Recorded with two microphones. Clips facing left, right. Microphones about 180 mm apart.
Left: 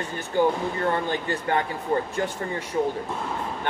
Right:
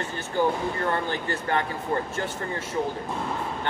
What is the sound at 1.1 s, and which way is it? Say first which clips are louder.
Speech: left 2 dB; 15° left (ahead or behind).